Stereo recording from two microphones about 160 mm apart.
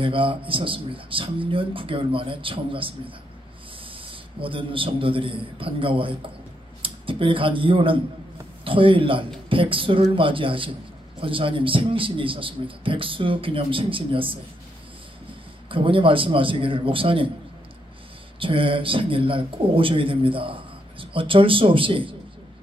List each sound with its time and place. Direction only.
0.0 s a man's voice: 35° right (ahead or behind)
3.9 s a man's voice: 35° right (ahead or behind)
15.7 s a man's voice: 35° right (ahead or behind)
18.4 s a man's voice: 35° right (ahead or behind)